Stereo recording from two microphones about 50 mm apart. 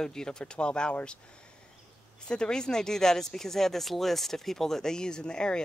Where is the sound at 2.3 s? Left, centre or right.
Centre.